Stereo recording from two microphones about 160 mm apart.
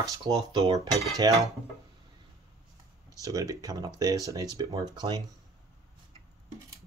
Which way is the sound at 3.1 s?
20° right (ahead or behind).